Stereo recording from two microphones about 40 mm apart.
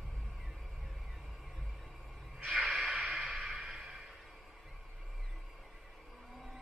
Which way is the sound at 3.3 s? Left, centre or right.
Centre.